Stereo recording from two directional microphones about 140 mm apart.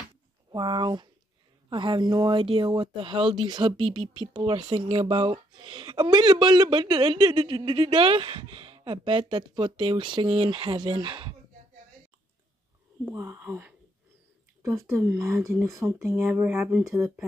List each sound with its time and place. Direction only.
0.5 s speech: 35° right (ahead or behind)
13.0 s speech: 20° right (ahead or behind)